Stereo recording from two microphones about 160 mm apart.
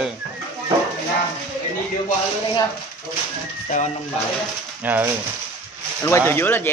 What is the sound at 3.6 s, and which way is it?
Speech, 50° left (ahead or behind).